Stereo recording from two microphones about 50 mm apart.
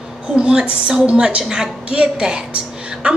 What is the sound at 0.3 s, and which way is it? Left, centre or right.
A woman's voice, centre.